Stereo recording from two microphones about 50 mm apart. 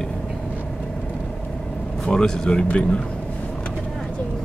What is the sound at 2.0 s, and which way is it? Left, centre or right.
Speech, centre.